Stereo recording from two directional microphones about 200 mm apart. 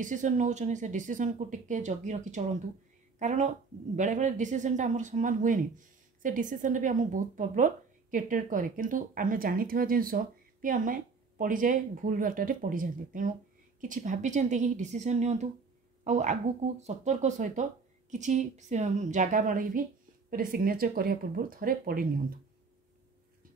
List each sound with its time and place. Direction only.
0.0 s speech: 40° right (ahead or behind)